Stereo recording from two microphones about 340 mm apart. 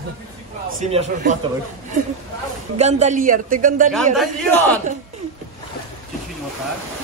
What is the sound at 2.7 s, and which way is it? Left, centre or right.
Speech, centre.